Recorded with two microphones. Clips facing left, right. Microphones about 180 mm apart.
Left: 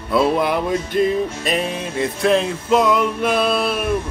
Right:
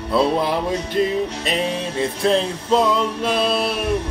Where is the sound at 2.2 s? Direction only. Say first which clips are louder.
Left 2 dB; 30° right (ahead or behind).